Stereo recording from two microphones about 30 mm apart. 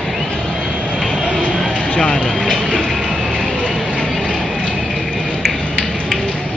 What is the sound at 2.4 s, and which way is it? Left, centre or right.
Speech, centre.